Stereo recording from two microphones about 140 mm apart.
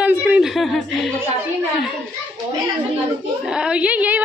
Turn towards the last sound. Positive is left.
turn(degrees=-10)  # may be behind; listen again after turning